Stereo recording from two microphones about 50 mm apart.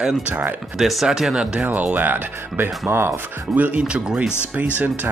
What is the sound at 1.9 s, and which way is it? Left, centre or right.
Speech, right.